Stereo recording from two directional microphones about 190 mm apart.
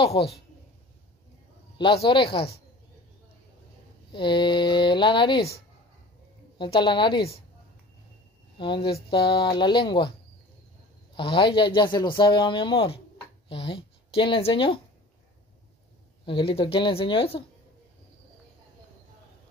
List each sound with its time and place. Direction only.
0.2 s speech: 25° left (ahead or behind)
2.0 s speech: 25° left (ahead or behind)
4.1 s speech: 25° left (ahead or behind)
6.6 s speech: 25° left (ahead or behind)
8.5 s speech: 25° left (ahead or behind)
11.1 s speech: 30° left (ahead or behind)
16.3 s speech: 30° left (ahead or behind)